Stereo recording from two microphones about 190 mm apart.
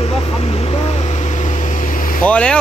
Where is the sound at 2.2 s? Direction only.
5° left (ahead or behind).